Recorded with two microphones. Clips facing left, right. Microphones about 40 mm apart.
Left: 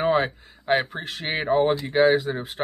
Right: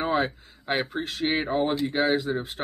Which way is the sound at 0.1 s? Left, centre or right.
Left.